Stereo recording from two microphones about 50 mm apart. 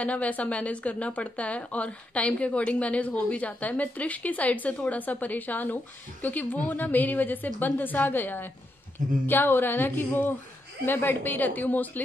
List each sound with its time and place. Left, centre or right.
0.0 s a woman's voice: left